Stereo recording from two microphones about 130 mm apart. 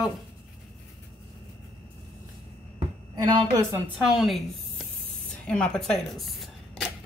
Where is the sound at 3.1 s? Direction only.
30° right (ahead or behind).